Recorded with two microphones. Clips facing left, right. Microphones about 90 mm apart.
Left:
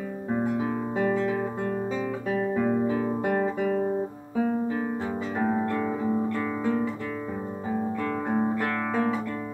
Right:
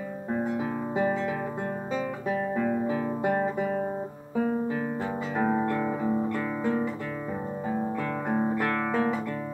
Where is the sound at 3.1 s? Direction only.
20° right (ahead or behind).